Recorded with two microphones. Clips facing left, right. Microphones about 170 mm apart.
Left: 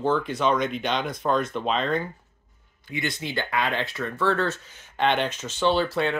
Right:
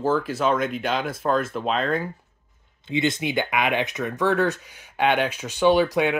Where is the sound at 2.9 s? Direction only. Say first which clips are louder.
Right 6 dB; 20° right (ahead or behind).